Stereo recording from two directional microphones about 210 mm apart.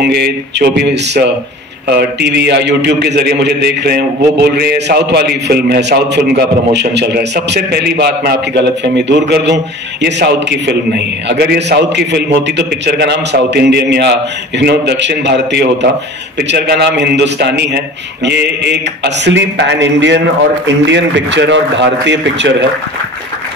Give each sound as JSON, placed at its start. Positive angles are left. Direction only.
{"t": 0.0, "sound": "a man's voice", "side_deg": -50}